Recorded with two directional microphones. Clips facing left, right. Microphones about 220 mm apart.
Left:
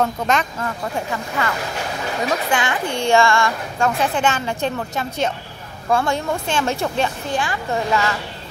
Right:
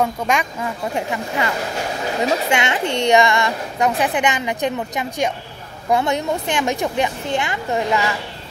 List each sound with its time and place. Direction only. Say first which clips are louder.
0.0 s a woman's voice: even; 10° right (ahead or behind)